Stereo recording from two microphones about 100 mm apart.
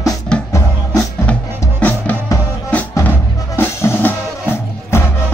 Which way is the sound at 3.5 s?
25° left (ahead or behind).